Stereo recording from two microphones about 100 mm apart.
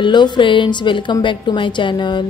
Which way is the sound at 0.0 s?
50° left (ahead or behind).